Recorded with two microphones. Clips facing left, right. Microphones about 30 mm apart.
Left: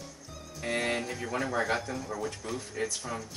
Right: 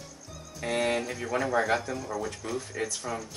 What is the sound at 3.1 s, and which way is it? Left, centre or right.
Speech, centre.